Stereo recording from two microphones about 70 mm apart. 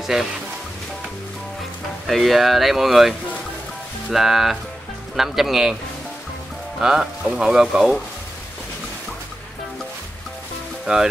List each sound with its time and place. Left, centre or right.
0.0 s speech: centre
2.0 s speech: centre
6.8 s speech: centre